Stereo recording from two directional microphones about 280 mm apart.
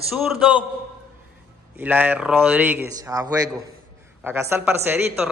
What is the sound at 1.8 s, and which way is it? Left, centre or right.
Speech, centre.